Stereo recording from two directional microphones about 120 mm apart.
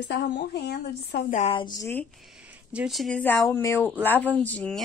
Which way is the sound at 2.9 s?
Centre (ahead or behind).